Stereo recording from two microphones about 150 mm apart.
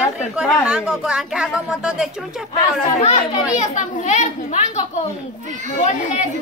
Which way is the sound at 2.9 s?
45° left (ahead or behind).